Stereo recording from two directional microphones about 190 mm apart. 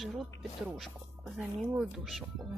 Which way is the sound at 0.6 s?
Centre (ahead or behind).